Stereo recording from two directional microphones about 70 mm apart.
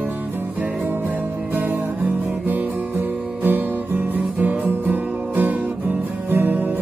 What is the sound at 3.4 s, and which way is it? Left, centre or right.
Music, right.